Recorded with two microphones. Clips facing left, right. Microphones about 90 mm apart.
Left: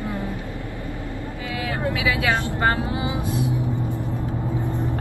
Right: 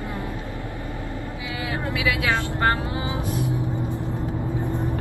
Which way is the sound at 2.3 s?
20° left (ahead or behind).